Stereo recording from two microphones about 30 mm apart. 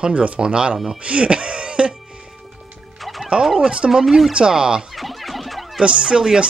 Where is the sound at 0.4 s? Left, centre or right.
Right.